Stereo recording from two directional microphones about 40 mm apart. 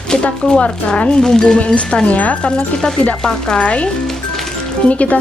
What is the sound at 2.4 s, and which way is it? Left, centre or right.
Speech, left.